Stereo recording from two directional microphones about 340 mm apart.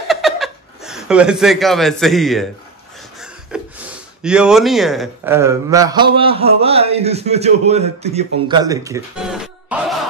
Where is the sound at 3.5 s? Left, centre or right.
Centre.